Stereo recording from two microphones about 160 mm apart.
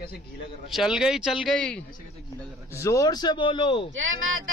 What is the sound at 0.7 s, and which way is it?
Speech, 5° right (ahead or behind).